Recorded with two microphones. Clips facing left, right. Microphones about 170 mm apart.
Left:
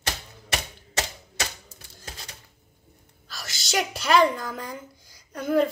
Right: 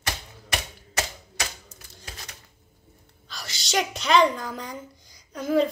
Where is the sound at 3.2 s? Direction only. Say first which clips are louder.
Even; centre (ahead or behind).